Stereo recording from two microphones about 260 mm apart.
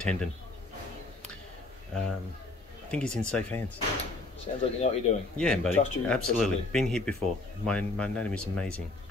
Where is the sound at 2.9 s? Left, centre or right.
Centre.